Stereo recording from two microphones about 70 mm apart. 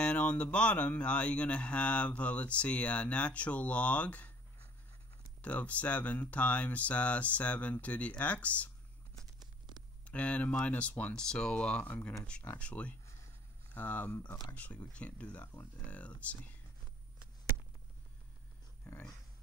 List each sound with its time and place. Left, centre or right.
0.0 s speech: centre
5.4 s speech: left
10.0 s speech: centre